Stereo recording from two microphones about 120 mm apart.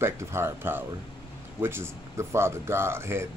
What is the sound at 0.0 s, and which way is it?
Speech, 20° right (ahead or behind).